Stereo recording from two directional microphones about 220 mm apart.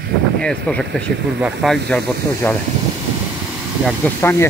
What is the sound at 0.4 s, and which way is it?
Speech, 5° left (ahead or behind).